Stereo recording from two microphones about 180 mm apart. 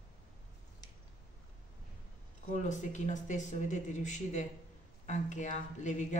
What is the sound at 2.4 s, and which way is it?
Speech, 40° left (ahead or behind).